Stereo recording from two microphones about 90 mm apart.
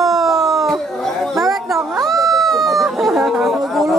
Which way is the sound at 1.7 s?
5° right (ahead or behind).